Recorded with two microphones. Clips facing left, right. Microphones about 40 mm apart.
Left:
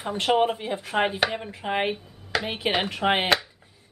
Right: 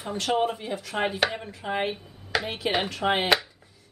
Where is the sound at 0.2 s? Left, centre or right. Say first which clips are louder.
Left 4 dB; left.